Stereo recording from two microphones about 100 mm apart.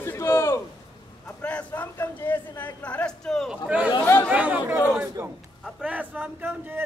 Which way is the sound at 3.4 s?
10° right (ahead or behind).